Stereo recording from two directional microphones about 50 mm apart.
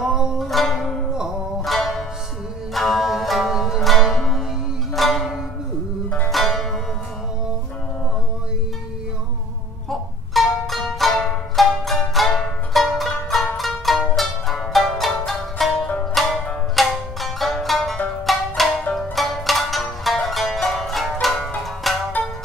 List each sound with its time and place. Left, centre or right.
0.0 s zither: centre
0.5 s zither: centre
1.6 s music: centre
9.8 s music: centre
16.2 s zither: centre
18.2 s music: centre
18.9 s zither: centre
21.8 s music: centre